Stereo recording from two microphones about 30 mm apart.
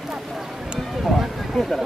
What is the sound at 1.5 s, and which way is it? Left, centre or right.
Speech, centre.